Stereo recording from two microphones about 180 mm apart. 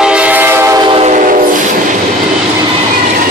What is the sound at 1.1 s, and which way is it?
Train, 45° right (ahead or behind).